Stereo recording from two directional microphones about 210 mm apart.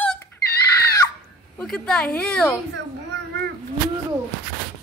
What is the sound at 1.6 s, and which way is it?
A woman's voice, 5° left (ahead or behind).